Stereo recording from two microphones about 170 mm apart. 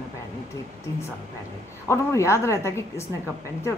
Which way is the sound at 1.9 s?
15° left (ahead or behind).